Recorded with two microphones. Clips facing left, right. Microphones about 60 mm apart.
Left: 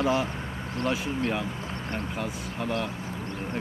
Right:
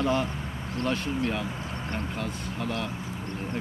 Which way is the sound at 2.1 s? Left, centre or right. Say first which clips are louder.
Even; centre.